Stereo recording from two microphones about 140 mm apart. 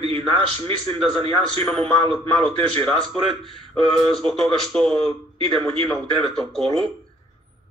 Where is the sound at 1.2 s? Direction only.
45° right (ahead or behind).